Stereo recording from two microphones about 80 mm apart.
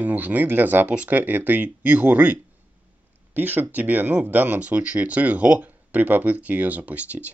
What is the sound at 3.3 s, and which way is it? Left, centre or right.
Speech, right.